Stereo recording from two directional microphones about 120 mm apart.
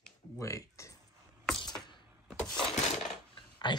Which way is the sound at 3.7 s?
40° left (ahead or behind).